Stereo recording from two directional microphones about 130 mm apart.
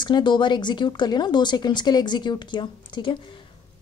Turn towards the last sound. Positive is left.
turn(degrees=40)  # may be behind; listen again after turning